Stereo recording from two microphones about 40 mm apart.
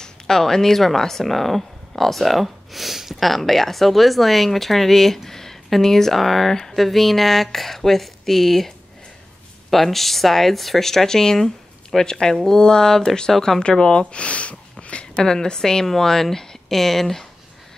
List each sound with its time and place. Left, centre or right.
0.0 s speech: centre; by 15.2 s left
15.2 s speech: centre